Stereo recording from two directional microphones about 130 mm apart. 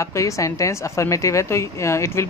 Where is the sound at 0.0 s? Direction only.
25° left (ahead or behind).